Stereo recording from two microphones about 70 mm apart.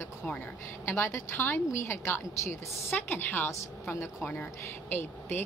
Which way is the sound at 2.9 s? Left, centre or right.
Left.